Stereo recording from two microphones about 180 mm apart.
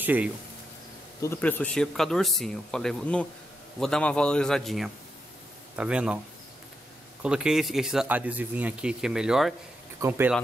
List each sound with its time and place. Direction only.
0.0 s speech: 10° right (ahead or behind)
1.2 s speech: 10° left (ahead or behind); by 6.1 s 5° right (ahead or behind)
7.2 s speech: 5° right (ahead or behind)